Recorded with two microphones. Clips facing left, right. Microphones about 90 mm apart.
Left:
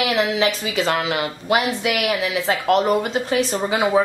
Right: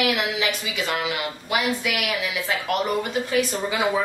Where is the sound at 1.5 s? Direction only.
80° left.